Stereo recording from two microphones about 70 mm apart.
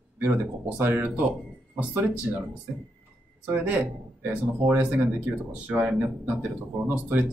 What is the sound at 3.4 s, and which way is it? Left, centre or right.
Speech, right.